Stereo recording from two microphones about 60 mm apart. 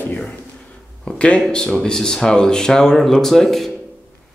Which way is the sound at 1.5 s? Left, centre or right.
Centre.